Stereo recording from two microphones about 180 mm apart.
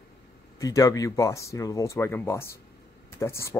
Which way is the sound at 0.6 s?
20° left (ahead or behind).